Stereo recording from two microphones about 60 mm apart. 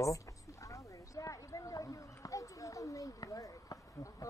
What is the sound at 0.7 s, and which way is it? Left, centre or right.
Clip-clop, left.